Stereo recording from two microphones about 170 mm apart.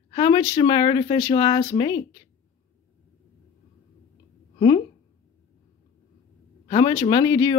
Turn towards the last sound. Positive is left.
turn(degrees=25)  # may be behind; listen again after turning